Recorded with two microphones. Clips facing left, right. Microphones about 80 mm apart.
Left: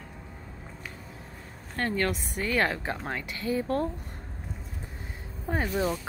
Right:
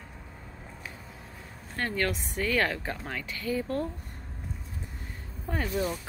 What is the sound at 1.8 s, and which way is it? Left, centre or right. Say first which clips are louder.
Speech: left 2 dB; left.